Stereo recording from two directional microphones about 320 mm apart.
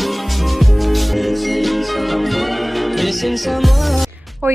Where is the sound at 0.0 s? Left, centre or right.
Centre.